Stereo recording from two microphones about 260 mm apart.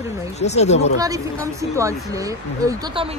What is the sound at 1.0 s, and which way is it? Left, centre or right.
A woman's voice, centre.